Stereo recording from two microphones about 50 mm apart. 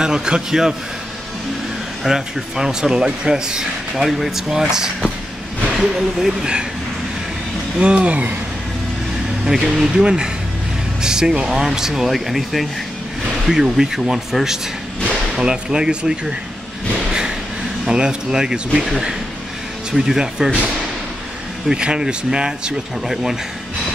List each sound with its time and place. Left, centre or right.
0.0 s speech: centre
2.0 s speech: centre
7.8 s speech: right
9.4 s speech: centre
17.8 s speech: centre
21.6 s speech: centre